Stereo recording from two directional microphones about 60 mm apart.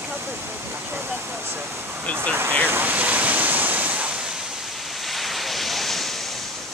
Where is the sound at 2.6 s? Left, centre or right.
Right.